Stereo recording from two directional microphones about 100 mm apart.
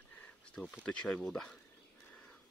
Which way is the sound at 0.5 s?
5° left (ahead or behind).